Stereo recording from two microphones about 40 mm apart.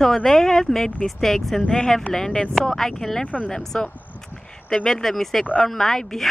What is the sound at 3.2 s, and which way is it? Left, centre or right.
Speech, left.